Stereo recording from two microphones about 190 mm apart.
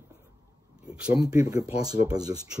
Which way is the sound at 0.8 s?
5° right (ahead or behind).